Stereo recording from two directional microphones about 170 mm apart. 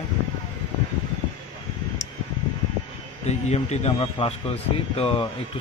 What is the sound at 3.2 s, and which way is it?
A man's voice, 40° left (ahead or behind).